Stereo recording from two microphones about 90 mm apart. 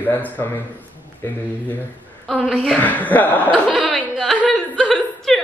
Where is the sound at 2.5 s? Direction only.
15° left (ahead or behind).